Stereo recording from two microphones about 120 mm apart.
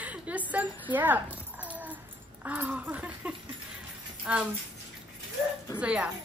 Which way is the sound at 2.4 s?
15° right (ahead or behind).